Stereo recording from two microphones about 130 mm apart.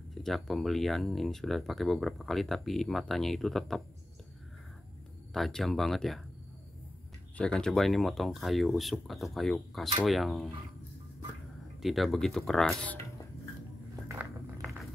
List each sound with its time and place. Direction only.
0.1 s speech: centre (ahead or behind)
5.3 s speech: centre (ahead or behind)
7.3 s speech: 5° left (ahead or behind)
11.8 s speech: centre (ahead or behind)
14.2 s a sound: 10° right (ahead or behind)
14.6 s vehicle: centre (ahead or behind)